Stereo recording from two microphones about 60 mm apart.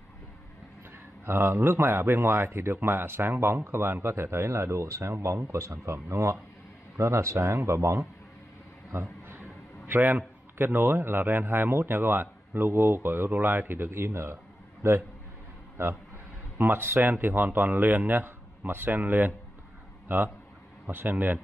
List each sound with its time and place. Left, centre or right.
1.2 s speech: right
9.3 s a man's voice: right
16.5 s speech: right